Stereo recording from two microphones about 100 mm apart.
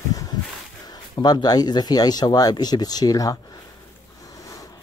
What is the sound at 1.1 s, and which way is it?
Speech, 45° left (ahead or behind).